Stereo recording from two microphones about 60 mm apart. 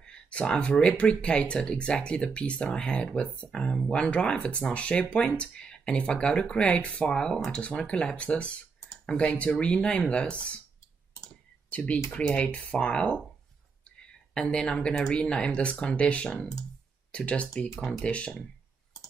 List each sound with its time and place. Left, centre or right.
0.0 s speech: centre
11.7 s speech: left
17.7 s speech: centre
18.0 s speech: centre